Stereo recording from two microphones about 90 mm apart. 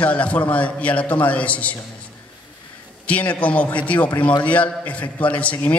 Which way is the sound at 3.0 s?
15° left (ahead or behind).